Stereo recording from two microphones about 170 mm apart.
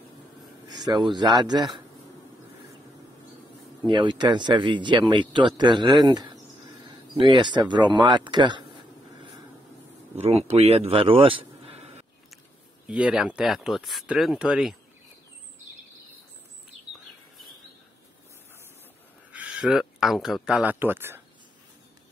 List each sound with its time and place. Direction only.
0.9 s speech: 20° right (ahead or behind)
3.8 s speech: 25° right (ahead or behind)
10.2 s speech: 40° right (ahead or behind)
12.8 s speech: 5° right (ahead or behind)
19.3 s speech: 5° right (ahead or behind)